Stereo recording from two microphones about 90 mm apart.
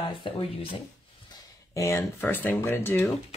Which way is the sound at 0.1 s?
80° left.